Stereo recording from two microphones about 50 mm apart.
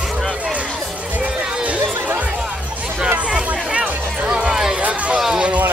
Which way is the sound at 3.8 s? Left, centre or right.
Right.